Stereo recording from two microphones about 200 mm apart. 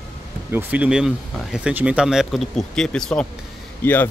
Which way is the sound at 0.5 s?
5° right (ahead or behind).